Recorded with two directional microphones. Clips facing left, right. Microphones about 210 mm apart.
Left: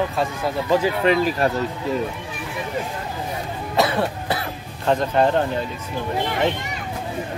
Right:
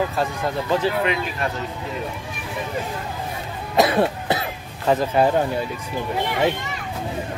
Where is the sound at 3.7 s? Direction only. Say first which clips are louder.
Right 3 dB; 20° right (ahead or behind).